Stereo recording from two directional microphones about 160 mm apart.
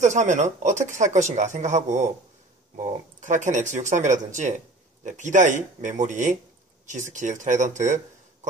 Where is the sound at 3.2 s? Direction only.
50° right (ahead or behind).